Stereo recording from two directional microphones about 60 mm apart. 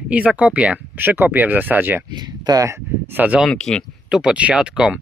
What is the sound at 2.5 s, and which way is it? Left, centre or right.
Speech, right.